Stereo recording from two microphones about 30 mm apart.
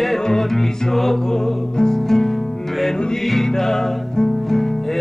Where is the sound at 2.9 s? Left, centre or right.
Left.